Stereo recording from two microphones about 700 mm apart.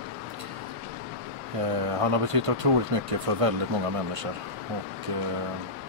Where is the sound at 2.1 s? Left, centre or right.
Right.